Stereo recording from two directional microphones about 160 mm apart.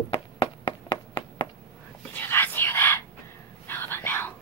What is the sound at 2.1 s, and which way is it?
Whispering, 15° left (ahead or behind).